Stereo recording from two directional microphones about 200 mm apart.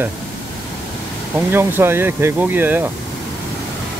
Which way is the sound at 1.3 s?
10° right (ahead or behind).